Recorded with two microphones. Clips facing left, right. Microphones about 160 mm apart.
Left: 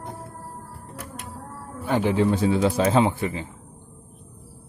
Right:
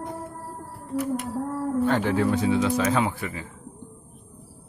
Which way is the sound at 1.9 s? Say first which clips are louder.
Left 4 dB; 15° left (ahead or behind).